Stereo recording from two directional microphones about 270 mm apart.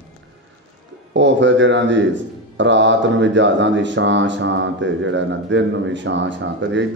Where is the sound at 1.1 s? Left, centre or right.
Right.